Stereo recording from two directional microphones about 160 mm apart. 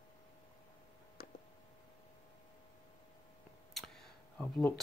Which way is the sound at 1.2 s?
70° left (ahead or behind).